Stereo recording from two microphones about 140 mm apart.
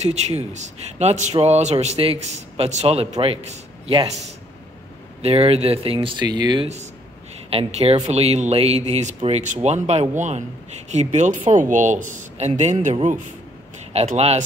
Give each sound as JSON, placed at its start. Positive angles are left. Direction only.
{"t": 0.0, "sound": "a man's voice", "side_deg": -50}
{"t": 5.2, "sound": "speech", "side_deg": -45}
{"t": 7.5, "sound": "a man's voice", "side_deg": -50}